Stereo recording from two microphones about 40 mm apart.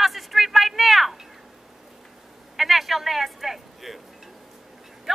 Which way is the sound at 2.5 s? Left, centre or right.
Centre.